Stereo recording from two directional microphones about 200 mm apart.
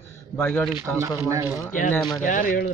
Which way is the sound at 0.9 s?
15° right (ahead or behind).